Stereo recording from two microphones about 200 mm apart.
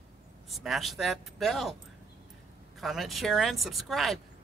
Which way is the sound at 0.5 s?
Centre (ahead or behind).